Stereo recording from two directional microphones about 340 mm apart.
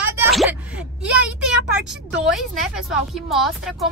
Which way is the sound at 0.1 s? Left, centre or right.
Centre.